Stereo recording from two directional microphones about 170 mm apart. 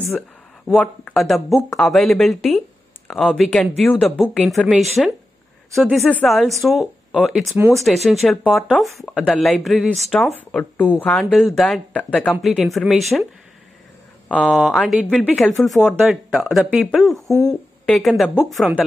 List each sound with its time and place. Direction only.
0.7 s speech: centre (ahead or behind)
14.3 s speech: 5° right (ahead or behind)
17.3 s speech: 20° left (ahead or behind)
17.8 s speech: centre (ahead or behind)